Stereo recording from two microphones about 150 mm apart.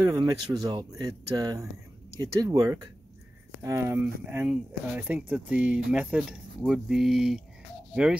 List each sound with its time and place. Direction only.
0.0 s speech: 25° right (ahead or behind); by 8.2 s 5° right (ahead or behind)